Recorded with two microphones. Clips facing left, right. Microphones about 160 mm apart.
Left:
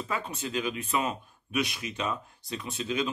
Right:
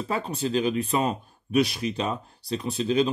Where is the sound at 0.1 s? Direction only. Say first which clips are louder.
Right 7 dB; 35° right (ahead or behind).